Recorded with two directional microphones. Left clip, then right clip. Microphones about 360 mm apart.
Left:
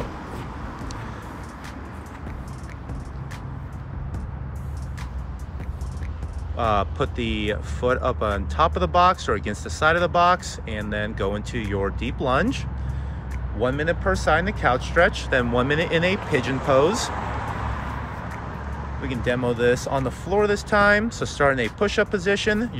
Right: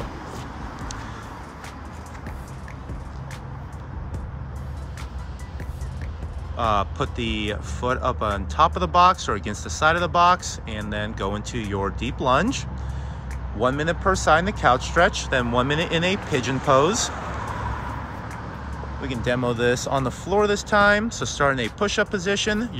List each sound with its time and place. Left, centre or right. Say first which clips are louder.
6.5 s speech: even; centre
17.1 s vehicle: left 1 dB; left
18.9 s speech: even; centre